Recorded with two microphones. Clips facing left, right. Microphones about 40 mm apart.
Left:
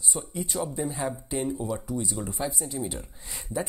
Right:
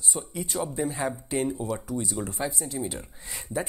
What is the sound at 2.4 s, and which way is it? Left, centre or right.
Speech, centre.